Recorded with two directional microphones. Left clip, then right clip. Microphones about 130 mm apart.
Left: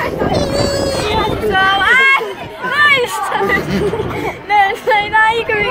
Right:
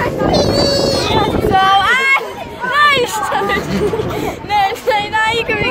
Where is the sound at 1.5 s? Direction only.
30° right (ahead or behind).